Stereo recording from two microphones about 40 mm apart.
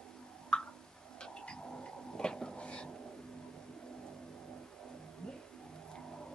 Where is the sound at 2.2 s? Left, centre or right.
Centre.